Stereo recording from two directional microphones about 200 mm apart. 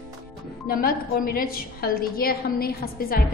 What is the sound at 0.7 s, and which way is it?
A woman's voice, 45° left (ahead or behind).